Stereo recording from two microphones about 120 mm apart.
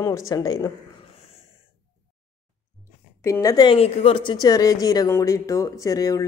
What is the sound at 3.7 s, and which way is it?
Speech, 55° left (ahead or behind).